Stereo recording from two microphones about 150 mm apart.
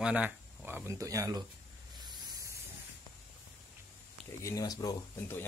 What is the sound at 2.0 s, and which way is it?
Spray, 25° right (ahead or behind).